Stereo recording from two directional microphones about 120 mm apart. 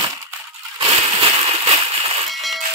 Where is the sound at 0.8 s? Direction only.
50° right (ahead or behind).